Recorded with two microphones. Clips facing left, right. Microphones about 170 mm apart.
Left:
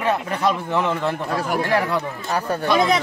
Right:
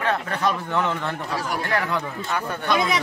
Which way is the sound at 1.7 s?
30° left (ahead or behind).